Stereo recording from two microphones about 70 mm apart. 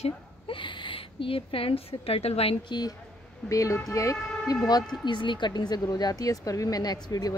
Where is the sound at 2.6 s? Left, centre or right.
Left.